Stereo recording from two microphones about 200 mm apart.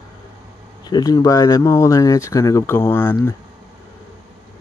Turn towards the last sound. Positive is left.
turn(degrees=10)  # may be behind; listen again after turning